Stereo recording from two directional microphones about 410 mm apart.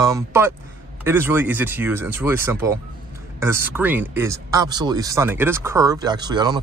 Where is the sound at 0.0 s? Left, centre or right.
Centre.